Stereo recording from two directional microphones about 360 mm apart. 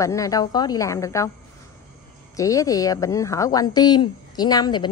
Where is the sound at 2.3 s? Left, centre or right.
Centre.